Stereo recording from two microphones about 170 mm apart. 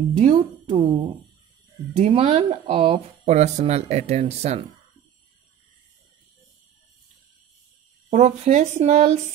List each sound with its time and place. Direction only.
0.2 s speech: 40° right (ahead or behind)
2.0 s speech: 40° right (ahead or behind)
8.1 s speech: 40° right (ahead or behind)